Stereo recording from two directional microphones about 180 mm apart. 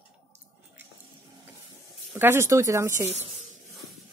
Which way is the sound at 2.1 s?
15° right (ahead or behind).